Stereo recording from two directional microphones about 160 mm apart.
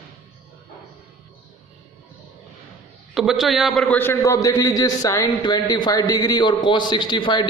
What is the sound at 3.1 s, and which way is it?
Speech, centre (ahead or behind).